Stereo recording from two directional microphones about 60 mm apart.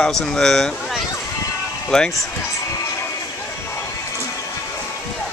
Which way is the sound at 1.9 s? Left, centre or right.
Centre.